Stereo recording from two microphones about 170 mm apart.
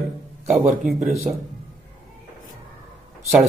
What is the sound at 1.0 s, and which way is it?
Speech, 5° right (ahead or behind).